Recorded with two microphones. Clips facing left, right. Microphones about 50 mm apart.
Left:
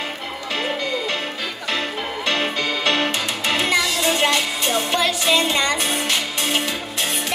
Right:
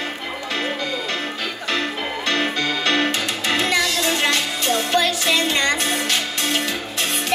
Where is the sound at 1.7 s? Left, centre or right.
Centre.